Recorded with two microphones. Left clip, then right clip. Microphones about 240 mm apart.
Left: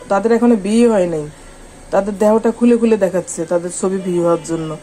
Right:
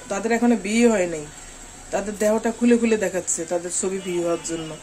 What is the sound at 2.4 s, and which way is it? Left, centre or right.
A man's voice, centre.